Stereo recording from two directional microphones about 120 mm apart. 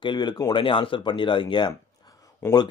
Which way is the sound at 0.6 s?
45° left (ahead or behind).